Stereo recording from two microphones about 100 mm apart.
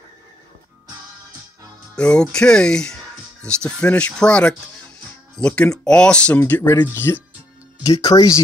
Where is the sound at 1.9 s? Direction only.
10° left (ahead or behind).